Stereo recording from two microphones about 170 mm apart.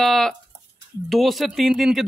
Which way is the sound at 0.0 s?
Centre (ahead or behind).